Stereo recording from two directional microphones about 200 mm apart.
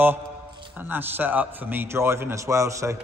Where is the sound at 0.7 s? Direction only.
10° right (ahead or behind).